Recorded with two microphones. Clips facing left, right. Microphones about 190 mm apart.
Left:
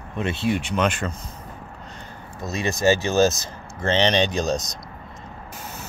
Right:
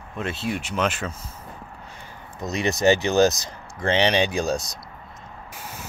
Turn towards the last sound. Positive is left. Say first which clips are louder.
# left 1 dB
turn(degrees=-10)  # may be behind; listen again after turning